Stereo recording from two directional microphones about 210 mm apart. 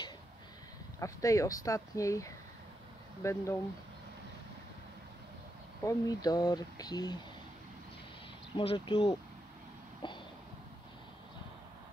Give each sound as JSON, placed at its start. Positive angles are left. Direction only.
{"t": 0.9, "sound": "speech", "side_deg": 15}
{"t": 5.9, "sound": "speech", "side_deg": 20}
{"t": 8.5, "sound": "speech", "side_deg": 25}
{"t": 10.0, "sound": "a sound", "side_deg": 20}